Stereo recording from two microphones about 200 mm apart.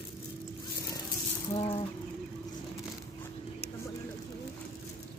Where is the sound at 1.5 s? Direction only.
30° left (ahead or behind).